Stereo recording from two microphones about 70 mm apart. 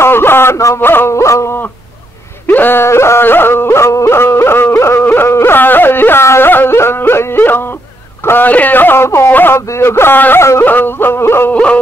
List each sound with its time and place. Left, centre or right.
0.0 s a sound: left
0.7 s yodeling: left
2.4 s yodeling: left
8.3 s speech: left
10.6 s yodeling: left
11.5 s yodeling: centre